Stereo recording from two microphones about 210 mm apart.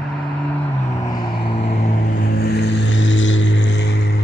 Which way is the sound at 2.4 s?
50° left (ahead or behind).